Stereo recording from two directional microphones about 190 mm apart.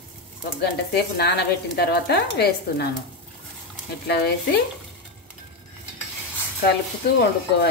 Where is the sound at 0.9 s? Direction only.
60° left (ahead or behind).